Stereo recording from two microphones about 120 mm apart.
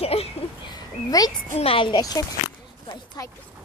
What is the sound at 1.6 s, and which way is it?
Speech, 45° left (ahead or behind).